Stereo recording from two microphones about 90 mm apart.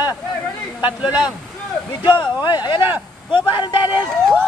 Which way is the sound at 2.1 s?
20° right (ahead or behind).